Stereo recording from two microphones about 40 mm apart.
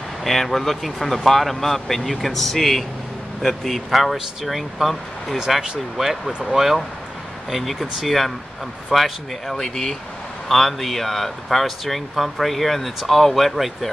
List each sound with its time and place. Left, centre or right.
0.2 s speech: centre
9.6 s speech: centre